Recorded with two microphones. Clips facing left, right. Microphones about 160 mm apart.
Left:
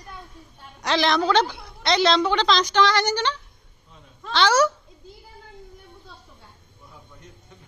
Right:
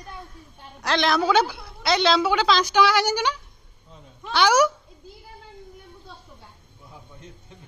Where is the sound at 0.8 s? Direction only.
Centre (ahead or behind).